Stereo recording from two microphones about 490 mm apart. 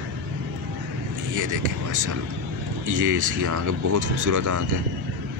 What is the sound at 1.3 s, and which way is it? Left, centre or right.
Speech, right.